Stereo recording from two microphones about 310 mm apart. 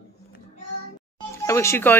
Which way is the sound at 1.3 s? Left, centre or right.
Centre.